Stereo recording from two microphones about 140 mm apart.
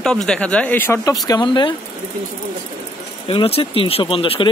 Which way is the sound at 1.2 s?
30° left (ahead or behind).